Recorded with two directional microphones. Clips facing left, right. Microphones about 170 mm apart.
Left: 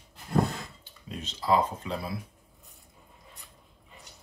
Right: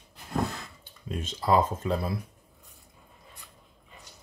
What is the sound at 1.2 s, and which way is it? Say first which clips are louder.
Speech: right 1 dB; 45° right (ahead or behind).